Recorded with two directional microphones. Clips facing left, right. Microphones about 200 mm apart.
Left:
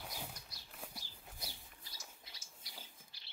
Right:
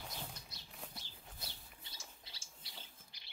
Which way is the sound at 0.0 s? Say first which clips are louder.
Left 1 dB; 5° left (ahead or behind).